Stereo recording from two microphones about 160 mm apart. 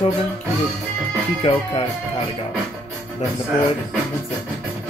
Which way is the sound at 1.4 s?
40° left (ahead or behind).